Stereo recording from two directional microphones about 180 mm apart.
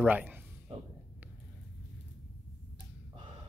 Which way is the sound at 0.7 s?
35° right (ahead or behind).